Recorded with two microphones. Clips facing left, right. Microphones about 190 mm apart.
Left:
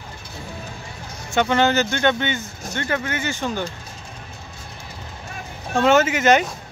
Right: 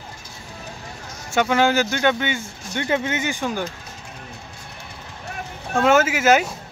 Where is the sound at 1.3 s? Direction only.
5° right (ahead or behind).